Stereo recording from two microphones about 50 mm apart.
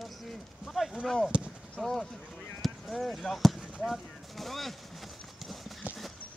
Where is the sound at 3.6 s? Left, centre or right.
Centre.